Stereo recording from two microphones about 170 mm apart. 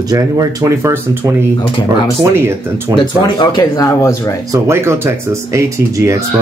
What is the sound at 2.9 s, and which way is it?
Speech, 25° left (ahead or behind).